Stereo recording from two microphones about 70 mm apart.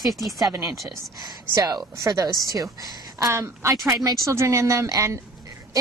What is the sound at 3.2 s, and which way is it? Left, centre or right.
A woman's voice, right.